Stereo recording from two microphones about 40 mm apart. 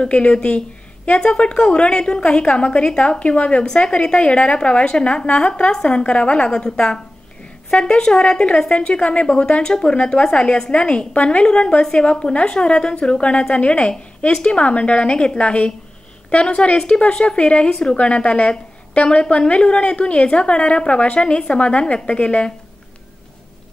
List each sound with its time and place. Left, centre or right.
0.0 s a woman's voice: left